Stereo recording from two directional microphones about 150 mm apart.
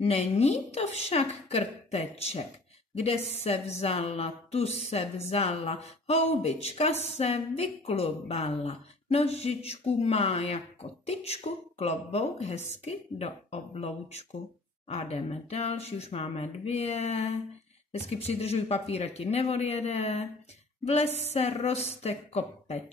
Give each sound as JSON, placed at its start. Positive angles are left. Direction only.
{"t": 0.0, "sound": "a woman's voice", "side_deg": 45}